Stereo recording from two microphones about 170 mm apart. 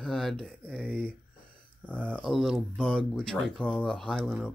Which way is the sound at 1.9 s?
5° left (ahead or behind).